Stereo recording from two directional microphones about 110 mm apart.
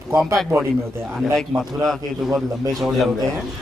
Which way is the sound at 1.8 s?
Centre (ahead or behind).